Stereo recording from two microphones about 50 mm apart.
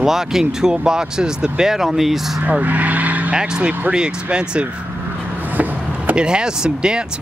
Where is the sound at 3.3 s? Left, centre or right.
Centre.